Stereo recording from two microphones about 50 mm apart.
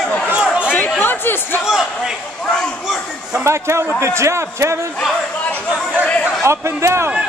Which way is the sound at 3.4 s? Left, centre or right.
Right.